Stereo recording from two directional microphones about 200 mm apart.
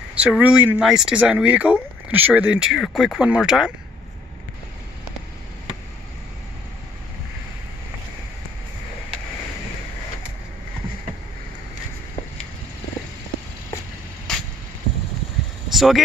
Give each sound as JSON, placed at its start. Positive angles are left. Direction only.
{"t": 0.1, "sound": "speech", "side_deg": -5}
{"t": 14.3, "sound": "a sound", "side_deg": 5}
{"t": 15.7, "sound": "vehicle", "side_deg": 0}